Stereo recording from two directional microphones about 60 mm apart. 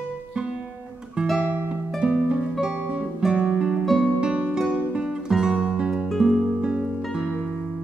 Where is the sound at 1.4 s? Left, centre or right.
Right.